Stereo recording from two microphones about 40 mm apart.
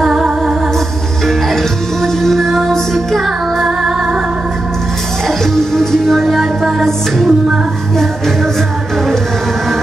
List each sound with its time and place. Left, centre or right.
0.0 s music: centre
1.2 s music: centre
3.6 s music: centre
5.4 s music: centre